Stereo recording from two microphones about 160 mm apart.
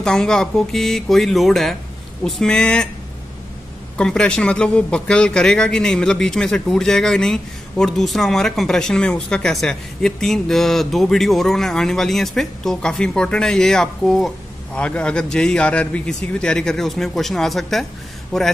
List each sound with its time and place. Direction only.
0.0 s a man's voice: 5° left (ahead or behind)
3.9 s a man's voice: 5° left (ahead or behind)